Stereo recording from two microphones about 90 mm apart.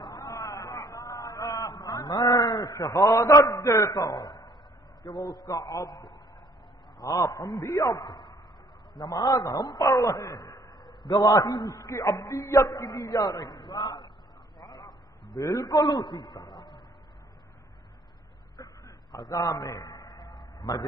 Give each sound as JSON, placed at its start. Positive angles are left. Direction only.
{"t": 0.1, "sound": "a sound", "side_deg": 40}
{"t": 2.8, "sound": "a man's voice", "side_deg": 45}
{"t": 3.6, "sound": "music", "side_deg": 35}
{"t": 4.1, "sound": "a man's voice", "side_deg": 55}
{"t": 9.0, "sound": "a man's voice", "side_deg": 50}
{"t": 9.8, "sound": "a man's voice", "side_deg": 35}
{"t": 12.1, "sound": "music", "side_deg": 35}
{"t": 12.6, "sound": "a man's voice", "side_deg": 45}
{"t": 14.7, "sound": "a sound", "side_deg": 55}
{"t": 18.6, "sound": "a sound", "side_deg": 40}
{"t": 19.1, "sound": "a man's voice", "side_deg": 50}
{"t": 19.6, "sound": "a sound", "side_deg": 45}